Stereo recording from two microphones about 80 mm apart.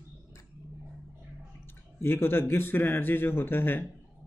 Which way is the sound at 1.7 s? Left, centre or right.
Left.